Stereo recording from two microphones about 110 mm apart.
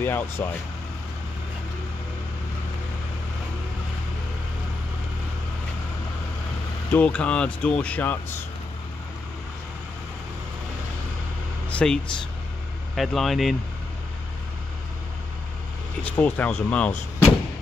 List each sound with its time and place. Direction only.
0.0 s speech: 20° left (ahead or behind)
6.9 s speech: 15° left (ahead or behind)
11.7 s a sound: 5° left (ahead or behind)
12.9 s speech: centre (ahead or behind)
16.0 s speech: 15° left (ahead or behind)